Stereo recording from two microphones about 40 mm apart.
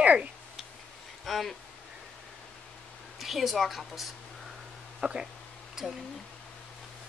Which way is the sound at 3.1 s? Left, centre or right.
Centre.